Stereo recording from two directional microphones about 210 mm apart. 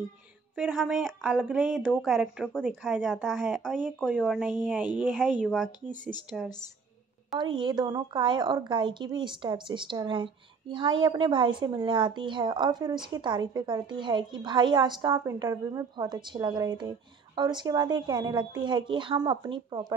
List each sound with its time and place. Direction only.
0.6 s speech: centre (ahead or behind)
7.3 s a woman's voice: 20° right (ahead or behind)